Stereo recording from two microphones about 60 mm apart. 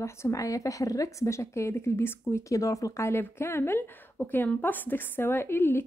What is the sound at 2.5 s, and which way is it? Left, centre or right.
Speech, left.